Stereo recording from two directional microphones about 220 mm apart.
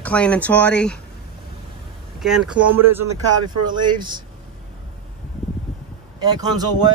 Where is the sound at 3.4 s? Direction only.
20° right (ahead or behind).